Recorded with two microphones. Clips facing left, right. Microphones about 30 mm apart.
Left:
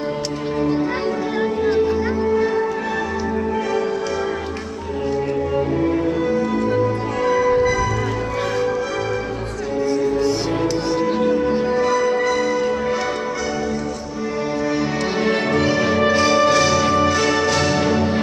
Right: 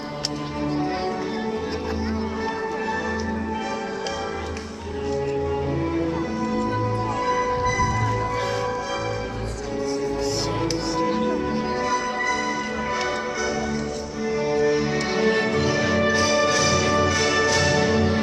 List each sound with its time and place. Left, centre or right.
5.8 s music: centre
9.8 s music: centre
14.6 s music: centre